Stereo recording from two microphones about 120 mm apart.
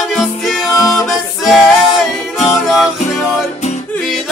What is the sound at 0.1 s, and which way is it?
Music, centre (ahead or behind).